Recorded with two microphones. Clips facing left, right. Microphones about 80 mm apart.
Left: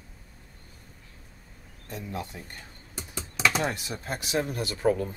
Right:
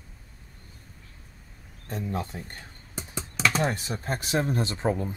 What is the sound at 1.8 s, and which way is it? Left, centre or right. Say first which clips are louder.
Speech: right 4 dB; right.